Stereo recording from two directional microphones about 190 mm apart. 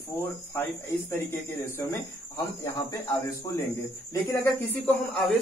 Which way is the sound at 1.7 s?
15° left (ahead or behind).